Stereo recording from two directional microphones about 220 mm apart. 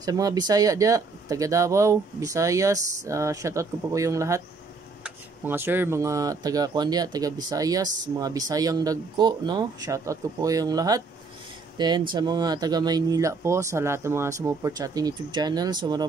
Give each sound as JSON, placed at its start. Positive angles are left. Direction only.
{"t": 0.0, "sound": "speech", "side_deg": -15}
{"t": 12.1, "sound": "speech", "side_deg": -20}